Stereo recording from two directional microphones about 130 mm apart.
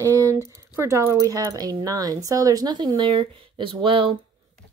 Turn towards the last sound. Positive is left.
turn(degrees=-40)  # may be behind; listen again after turning